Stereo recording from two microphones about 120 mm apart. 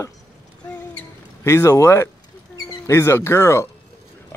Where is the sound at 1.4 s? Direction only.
25° left (ahead or behind).